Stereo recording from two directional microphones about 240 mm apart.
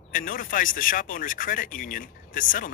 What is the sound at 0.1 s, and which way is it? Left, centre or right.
Speech, left.